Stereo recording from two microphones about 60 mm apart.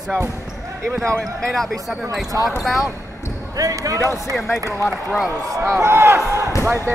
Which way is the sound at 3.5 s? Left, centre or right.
Right.